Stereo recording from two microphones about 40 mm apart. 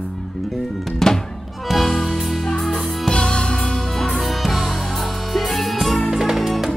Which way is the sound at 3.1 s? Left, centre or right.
Left.